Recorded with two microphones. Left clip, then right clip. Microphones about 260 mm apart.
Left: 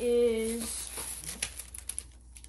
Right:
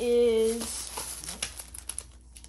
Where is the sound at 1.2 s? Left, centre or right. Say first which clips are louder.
Right 2 dB; centre.